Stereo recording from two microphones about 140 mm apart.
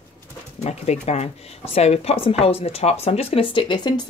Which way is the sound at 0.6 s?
50° left (ahead or behind).